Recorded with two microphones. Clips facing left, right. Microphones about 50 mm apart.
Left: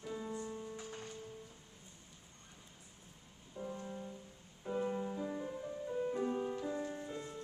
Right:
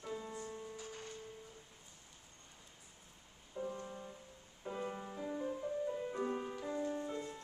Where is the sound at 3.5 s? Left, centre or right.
Centre.